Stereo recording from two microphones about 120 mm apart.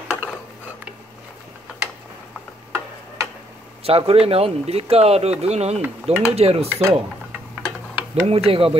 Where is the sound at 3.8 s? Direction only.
55° right (ahead or behind).